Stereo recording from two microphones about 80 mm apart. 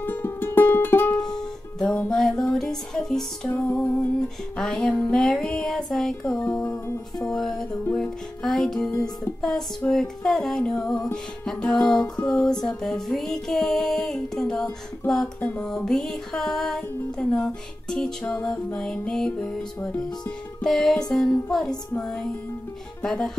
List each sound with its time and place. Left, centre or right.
0.0 s music: left
2.0 s music: centre
20.6 s music: centre